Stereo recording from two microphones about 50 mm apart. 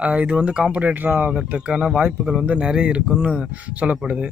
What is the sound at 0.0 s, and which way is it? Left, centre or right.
A man's voice, right.